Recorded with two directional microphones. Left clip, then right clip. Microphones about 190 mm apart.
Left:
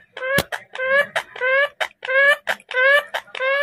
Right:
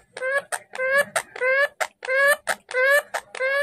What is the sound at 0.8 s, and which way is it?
Chicken, 25° right (ahead or behind).